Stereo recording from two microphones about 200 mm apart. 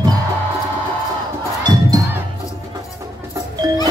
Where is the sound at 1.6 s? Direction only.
20° right (ahead or behind).